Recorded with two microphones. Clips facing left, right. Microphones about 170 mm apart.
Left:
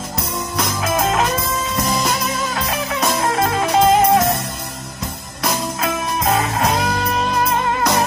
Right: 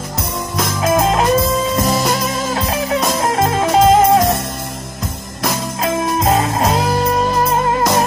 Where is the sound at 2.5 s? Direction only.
35° right (ahead or behind).